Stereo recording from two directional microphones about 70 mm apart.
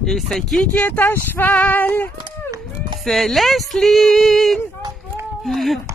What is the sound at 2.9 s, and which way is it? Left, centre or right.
Speech, centre.